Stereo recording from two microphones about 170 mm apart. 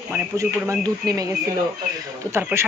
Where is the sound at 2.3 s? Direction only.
15° right (ahead or behind).